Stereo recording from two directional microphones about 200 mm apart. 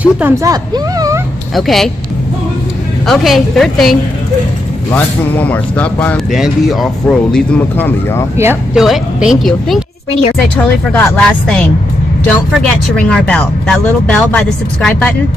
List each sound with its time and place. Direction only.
0.0 s speech: 10° right (ahead or behind)
1.5 s speech: centre (ahead or behind)
3.1 s speech: centre (ahead or behind)
4.9 s speech: 10° left (ahead or behind)
8.4 s speech: 10° right (ahead or behind); by 15.1 s 5° left (ahead or behind)